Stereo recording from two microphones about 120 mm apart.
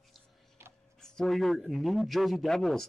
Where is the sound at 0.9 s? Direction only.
5° left (ahead or behind).